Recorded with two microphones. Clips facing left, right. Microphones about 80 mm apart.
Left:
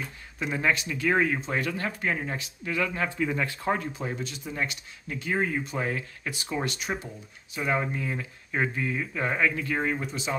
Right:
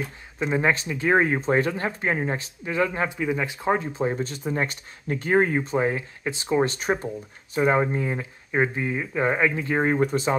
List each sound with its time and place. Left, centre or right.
0.4 s speech: right
3.1 s speech: centre
9.9 s speech: right